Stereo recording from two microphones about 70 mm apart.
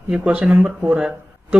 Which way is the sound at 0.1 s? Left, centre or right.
Centre.